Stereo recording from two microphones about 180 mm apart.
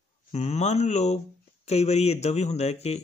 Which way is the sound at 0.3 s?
40° left (ahead or behind).